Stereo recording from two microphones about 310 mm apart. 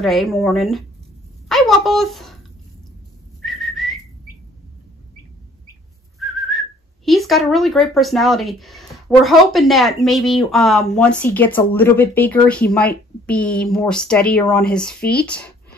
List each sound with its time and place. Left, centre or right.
0.0 s speech: centre
3.4 s whistling: centre
6.1 s whistling: centre
7.1 s speech: centre
15.0 s speech: left